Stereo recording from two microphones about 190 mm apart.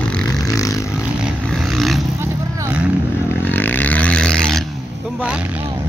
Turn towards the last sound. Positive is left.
turn(degrees=5)  # may be behind; listen again after turning